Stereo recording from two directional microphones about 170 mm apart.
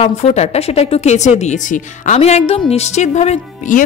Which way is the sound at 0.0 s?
40° left (ahead or behind).